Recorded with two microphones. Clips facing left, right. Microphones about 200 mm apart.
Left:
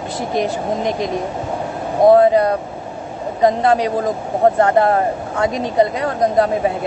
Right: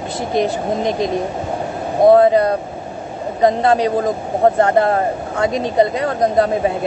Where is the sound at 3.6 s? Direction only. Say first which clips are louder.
Right 1 dB; 25° right (ahead or behind).